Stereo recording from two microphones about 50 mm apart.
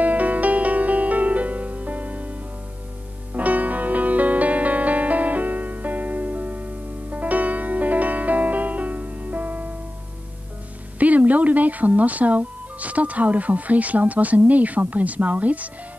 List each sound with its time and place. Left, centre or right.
0.0 s music: right
3.3 s music: right
11.0 s speech: right